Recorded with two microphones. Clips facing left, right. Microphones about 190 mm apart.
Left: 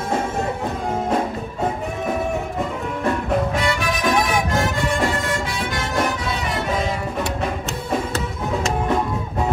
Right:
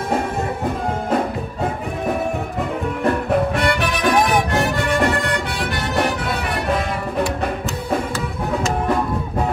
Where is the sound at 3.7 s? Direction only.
60° right (ahead or behind).